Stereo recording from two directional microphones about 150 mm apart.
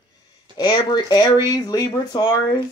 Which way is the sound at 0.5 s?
30° left (ahead or behind).